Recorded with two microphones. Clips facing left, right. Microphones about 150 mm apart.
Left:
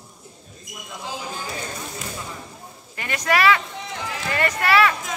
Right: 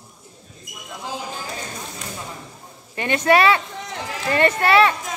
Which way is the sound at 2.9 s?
25° right (ahead or behind).